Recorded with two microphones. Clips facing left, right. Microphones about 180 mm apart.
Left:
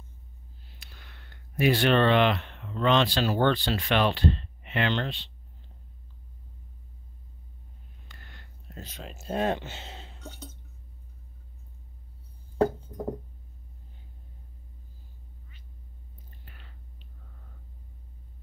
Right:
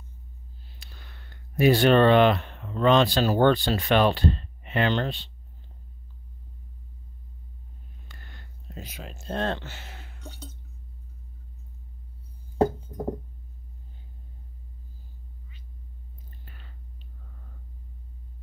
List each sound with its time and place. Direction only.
1.6 s speech: 40° right (ahead or behind)
8.7 s speech: 10° right (ahead or behind)
9.1 s speech: 5° left (ahead or behind)